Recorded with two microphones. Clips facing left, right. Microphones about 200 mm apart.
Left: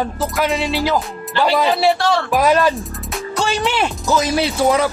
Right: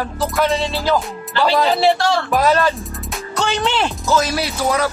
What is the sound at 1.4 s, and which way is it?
Speech, 10° left (ahead or behind).